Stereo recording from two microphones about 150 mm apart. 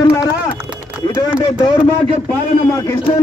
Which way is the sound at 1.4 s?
30° left (ahead or behind).